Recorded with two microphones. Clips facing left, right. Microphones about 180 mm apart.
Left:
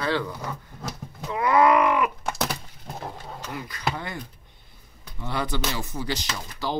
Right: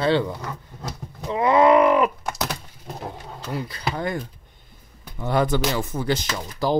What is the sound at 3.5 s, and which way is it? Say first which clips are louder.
Speech: right 3 dB; 30° right (ahead or behind).